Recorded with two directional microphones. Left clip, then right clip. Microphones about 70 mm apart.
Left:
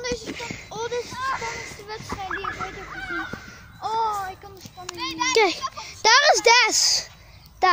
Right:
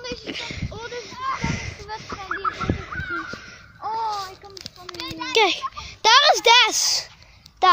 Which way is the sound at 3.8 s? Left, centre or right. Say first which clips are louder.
Left 2 dB; left.